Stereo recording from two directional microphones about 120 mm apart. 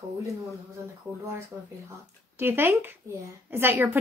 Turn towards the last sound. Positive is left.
turn(degrees=-20)  # may be behind; listen again after turning